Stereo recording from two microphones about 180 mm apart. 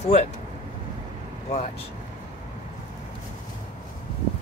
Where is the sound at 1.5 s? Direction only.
35° left (ahead or behind).